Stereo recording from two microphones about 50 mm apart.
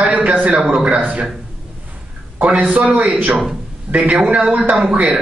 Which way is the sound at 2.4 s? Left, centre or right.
Right.